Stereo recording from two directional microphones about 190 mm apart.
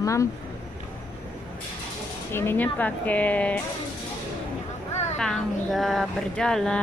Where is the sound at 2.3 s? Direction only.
10° left (ahead or behind).